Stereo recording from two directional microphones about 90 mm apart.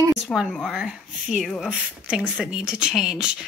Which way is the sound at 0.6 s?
5° right (ahead or behind).